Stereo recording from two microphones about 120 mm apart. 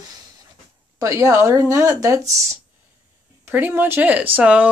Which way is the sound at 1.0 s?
25° right (ahead or behind).